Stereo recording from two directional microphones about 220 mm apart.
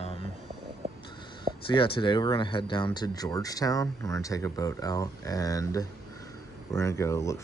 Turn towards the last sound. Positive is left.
turn(degrees=15)  # may be behind; listen again after turning